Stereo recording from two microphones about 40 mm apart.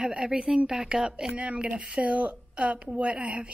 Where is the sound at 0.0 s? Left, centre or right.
Right.